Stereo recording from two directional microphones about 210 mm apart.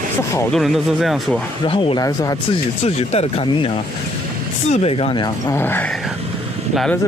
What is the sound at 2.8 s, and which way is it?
Speech, 30° left (ahead or behind).